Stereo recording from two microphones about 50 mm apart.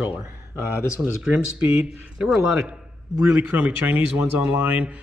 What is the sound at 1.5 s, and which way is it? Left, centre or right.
Speech, right.